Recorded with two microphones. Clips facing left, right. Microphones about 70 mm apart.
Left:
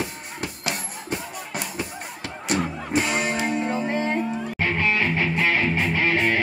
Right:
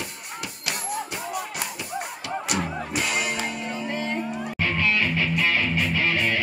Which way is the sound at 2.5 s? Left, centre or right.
Left.